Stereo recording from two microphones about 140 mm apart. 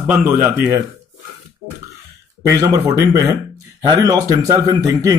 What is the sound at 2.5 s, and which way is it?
A man's voice, 25° right (ahead or behind).